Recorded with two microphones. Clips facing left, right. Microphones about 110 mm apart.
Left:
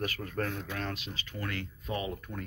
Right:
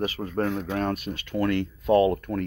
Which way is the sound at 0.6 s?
45° right (ahead or behind).